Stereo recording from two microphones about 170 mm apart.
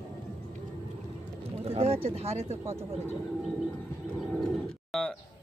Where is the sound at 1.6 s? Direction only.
35° right (ahead or behind).